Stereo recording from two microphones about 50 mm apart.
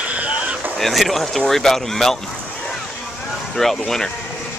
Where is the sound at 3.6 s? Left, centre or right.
Centre.